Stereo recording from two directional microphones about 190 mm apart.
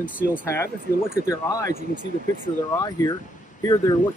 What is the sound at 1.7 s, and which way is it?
Speech, 40° right (ahead or behind).